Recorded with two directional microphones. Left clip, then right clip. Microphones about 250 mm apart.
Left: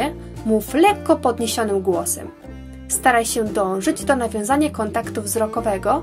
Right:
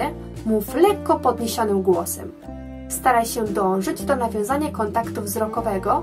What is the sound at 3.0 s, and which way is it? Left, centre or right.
A woman's voice, left.